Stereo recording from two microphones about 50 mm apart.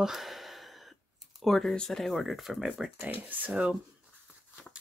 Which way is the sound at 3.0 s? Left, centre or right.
Right.